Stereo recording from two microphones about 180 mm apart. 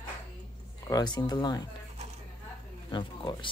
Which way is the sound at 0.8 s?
20° left (ahead or behind).